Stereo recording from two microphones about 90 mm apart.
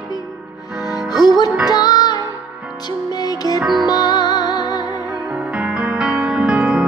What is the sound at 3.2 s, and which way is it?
Music, 45° left (ahead or behind).